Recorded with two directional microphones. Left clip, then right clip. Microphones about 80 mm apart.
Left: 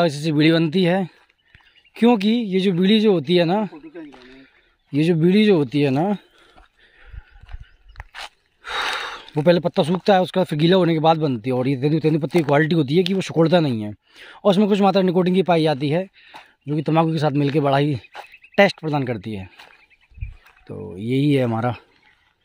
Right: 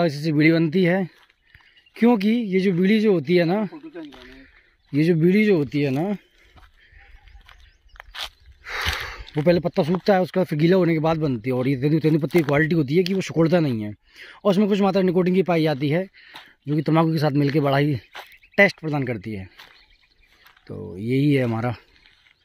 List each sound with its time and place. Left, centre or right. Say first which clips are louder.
0.0 s speech: left 2 dB; left
2.8 s speech: left 4 dB; left; by 4.0 s centre
4.1 s a sound: even; centre
4.9 s speech: left 1 dB; centre
5.4 s speech: left 3 dB; left
8.0 s a sound: left 1 dB; left
8.9 s a sound: left 3 dB; left
10.0 s speech: left 3 dB; left
11.6 s speech: left 1 dB; centre
12.5 s speech: left 2 dB; left
15.7 s speech: left 2 dB; centre
16.7 s speech: left 1 dB; centre; by 18.0 s left
18.1 s speech: left 3 dB; left
20.4 s speech: left 2 dB; left